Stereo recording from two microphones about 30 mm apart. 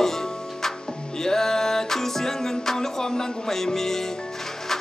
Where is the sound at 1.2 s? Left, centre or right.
Centre.